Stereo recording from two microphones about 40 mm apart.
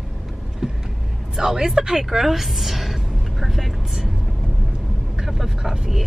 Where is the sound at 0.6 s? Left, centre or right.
Centre.